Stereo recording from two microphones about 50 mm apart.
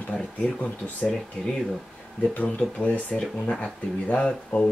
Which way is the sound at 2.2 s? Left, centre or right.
Left.